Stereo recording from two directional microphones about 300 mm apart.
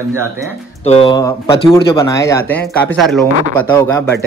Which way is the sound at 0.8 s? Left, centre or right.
Centre.